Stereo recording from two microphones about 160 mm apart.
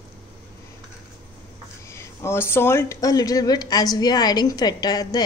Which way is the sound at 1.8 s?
15° left (ahead or behind).